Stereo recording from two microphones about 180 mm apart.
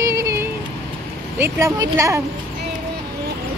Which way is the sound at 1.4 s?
15° right (ahead or behind).